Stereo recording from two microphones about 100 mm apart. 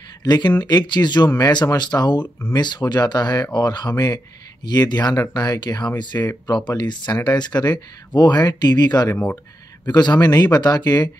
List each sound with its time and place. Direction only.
0.2 s speech: 45° left (ahead or behind)